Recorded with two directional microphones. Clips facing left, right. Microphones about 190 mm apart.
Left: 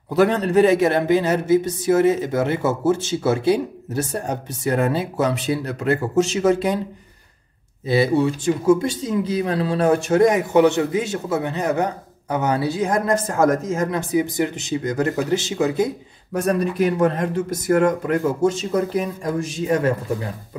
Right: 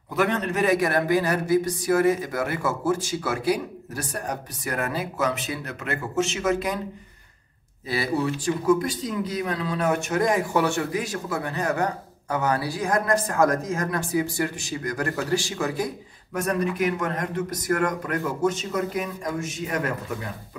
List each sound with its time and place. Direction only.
0.1 s speech: 35° left (ahead or behind)
7.8 s speech: 25° left (ahead or behind)
16.3 s speech: 30° left (ahead or behind)